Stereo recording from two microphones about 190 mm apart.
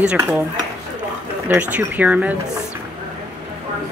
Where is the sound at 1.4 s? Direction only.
10° right (ahead or behind).